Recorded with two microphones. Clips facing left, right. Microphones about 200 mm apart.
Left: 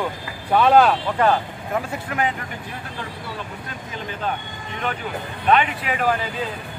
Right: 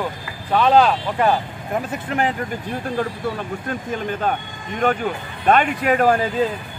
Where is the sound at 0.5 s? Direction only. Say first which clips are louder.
Even; 5° left (ahead or behind).